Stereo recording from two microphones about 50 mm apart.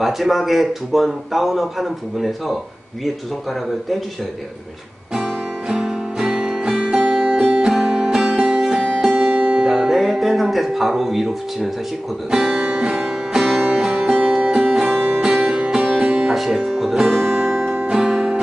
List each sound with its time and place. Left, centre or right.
0.0 s a man's voice: centre
5.1 s music: centre
9.8 s music: centre
12.3 s speech: centre
12.9 s music: centre
14.0 s music: centre
14.4 s music: right
16.3 s guitar: centre
17.7 s music: centre